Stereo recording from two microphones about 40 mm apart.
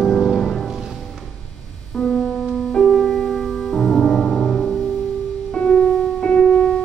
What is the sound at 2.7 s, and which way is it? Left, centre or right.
Music, centre.